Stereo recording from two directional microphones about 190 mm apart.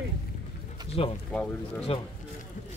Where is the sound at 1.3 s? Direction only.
5° left (ahead or behind).